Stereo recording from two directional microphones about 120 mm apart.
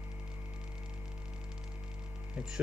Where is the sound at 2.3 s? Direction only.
5° right (ahead or behind).